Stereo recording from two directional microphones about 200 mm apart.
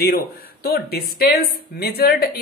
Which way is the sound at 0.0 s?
50° left (ahead or behind).